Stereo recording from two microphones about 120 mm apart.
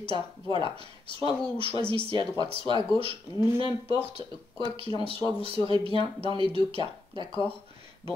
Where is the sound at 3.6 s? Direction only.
45° left (ahead or behind).